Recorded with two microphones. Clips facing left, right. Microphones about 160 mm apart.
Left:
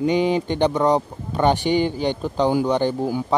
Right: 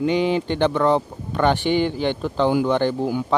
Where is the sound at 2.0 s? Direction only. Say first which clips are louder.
Even; 15° left (ahead or behind).